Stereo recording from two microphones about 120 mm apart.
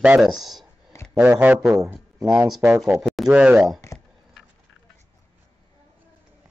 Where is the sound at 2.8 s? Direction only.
Centre (ahead or behind).